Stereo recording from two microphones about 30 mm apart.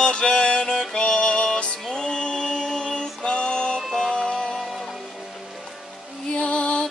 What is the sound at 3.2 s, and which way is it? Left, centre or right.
Music, left.